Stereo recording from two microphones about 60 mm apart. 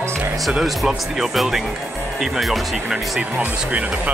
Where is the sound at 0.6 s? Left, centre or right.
Centre.